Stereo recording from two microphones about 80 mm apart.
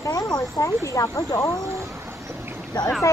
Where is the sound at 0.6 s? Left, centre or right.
Left.